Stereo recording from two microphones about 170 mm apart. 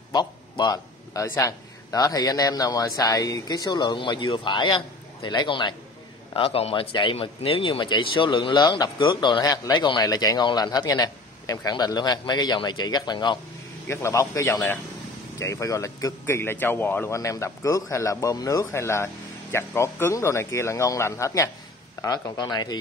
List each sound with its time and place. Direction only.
0.1 s speech: 25° left (ahead or behind)